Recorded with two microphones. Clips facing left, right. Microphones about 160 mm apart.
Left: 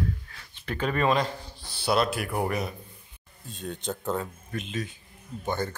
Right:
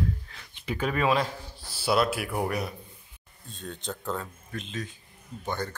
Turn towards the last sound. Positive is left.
turn(degrees=5)  # may be behind; listen again after turning